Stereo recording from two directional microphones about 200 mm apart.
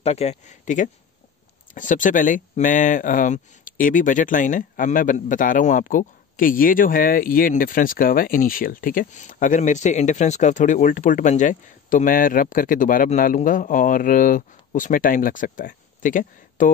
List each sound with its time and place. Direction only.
0.0 s speech: 30° left (ahead or behind)